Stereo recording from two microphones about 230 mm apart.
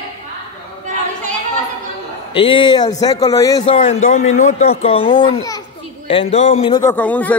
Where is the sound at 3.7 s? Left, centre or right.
Left.